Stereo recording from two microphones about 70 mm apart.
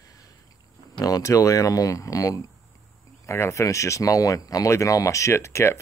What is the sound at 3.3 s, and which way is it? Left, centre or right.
Speech, left.